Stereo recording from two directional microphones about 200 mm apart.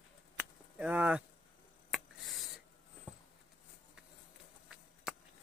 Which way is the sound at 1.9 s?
Centre (ahead or behind).